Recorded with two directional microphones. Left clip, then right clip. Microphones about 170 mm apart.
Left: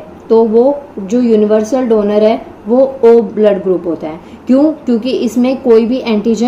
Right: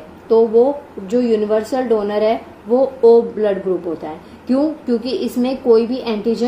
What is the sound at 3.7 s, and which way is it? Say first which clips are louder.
A woman's voice: left 6 dB; 45° left (ahead or behind).